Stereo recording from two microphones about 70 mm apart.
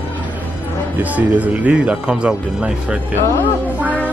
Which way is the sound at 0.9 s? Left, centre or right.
Right.